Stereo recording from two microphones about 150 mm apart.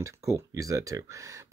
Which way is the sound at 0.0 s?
20° right (ahead or behind).